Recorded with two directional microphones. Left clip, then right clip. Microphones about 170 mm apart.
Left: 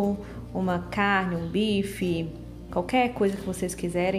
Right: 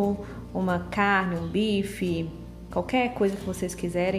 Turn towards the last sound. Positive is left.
turn(degrees=0)  # may be behind; listen again after turning